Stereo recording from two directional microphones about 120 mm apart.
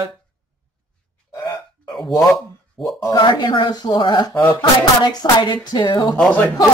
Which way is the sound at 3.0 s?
40° left (ahead or behind).